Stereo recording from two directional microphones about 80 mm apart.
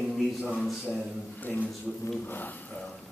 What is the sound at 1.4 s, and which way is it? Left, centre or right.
Speech, left.